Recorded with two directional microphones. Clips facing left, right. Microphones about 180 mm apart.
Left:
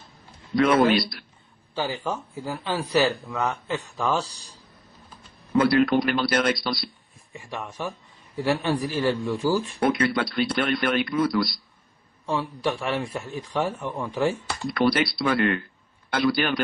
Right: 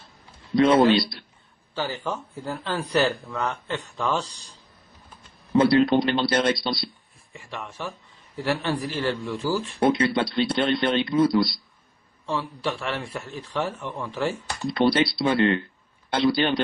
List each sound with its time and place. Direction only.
0.6 s speech: 25° right (ahead or behind)
1.8 s speech: 10° left (ahead or behind)
5.5 s speech: 25° right (ahead or behind)
7.3 s speech: 15° left (ahead or behind)
9.8 s speech: 25° right (ahead or behind)
12.3 s speech: 15° left (ahead or behind)
14.7 s speech: 25° right (ahead or behind)